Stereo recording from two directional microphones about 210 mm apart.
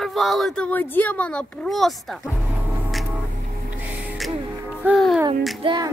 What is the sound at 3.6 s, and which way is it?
Music, 5° right (ahead or behind).